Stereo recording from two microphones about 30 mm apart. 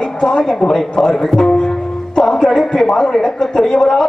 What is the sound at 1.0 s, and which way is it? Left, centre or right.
A man's voice, centre.